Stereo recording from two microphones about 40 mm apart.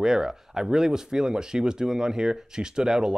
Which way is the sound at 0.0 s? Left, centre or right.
Centre.